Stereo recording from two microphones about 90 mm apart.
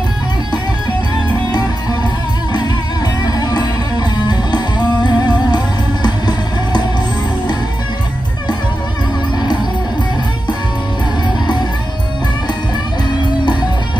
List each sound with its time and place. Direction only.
3.3 s music: 45° left (ahead or behind)